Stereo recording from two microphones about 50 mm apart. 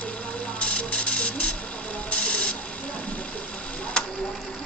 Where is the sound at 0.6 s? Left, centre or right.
Left.